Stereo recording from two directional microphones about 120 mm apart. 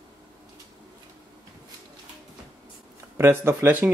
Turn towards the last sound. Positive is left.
turn(degrees=-15)  # may be behind; listen again after turning